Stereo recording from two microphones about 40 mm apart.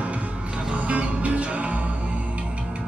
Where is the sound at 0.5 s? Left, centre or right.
Centre.